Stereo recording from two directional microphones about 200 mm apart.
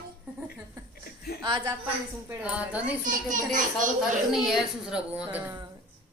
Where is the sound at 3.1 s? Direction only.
40° right (ahead or behind).